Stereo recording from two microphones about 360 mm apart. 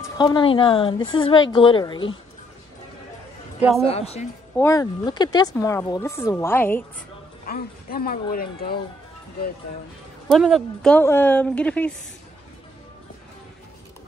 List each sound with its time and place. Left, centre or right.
0.2 s speech: centre
3.8 s speech: centre
7.4 s speech: left
10.2 s a woman's voice: centre